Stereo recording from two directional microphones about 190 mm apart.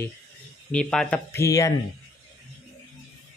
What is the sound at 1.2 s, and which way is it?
Speech, 15° left (ahead or behind).